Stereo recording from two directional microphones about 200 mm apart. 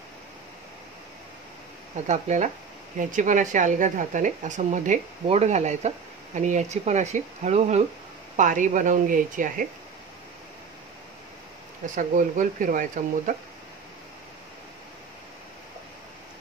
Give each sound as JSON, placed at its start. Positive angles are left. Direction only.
{"t": 2.0, "sound": "speech", "side_deg": -35}
{"t": 11.8, "sound": "speech", "side_deg": -40}